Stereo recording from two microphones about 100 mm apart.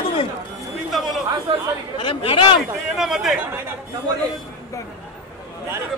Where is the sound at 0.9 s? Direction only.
Centre (ahead or behind).